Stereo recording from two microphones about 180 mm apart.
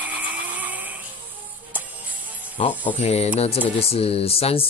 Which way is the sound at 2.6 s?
35° left (ahead or behind).